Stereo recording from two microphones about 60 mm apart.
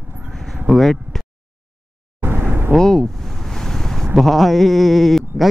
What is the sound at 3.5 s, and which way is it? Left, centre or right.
Vehicle, centre.